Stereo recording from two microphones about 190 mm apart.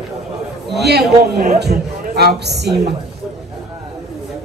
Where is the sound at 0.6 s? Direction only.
60° right (ahead or behind).